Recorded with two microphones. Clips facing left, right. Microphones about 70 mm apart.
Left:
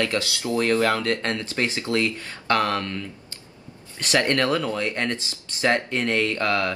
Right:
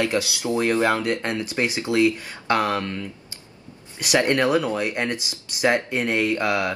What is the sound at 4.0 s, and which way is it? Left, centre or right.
Speech, centre.